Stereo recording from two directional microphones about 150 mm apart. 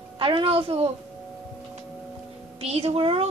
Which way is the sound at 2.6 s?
45° right (ahead or behind).